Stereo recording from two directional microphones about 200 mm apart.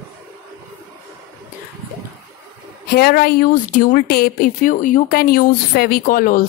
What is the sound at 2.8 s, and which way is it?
A woman's voice, 50° left (ahead or behind).